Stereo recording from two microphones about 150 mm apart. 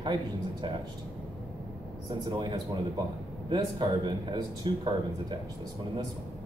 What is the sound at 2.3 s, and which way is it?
A man's voice, 30° right (ahead or behind).